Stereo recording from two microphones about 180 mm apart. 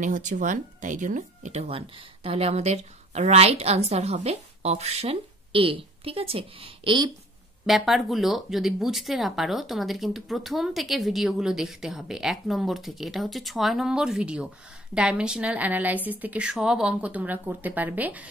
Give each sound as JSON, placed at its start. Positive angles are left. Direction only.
{"t": 0.0, "sound": "speech", "side_deg": -45}
{"t": 7.6, "sound": "a woman's voice", "side_deg": 0}